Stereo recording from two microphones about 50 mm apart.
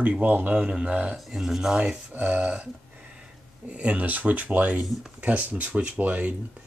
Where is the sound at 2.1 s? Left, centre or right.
Right.